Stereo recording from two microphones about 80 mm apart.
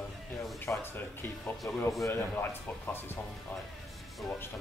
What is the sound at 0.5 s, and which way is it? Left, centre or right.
Speech, left.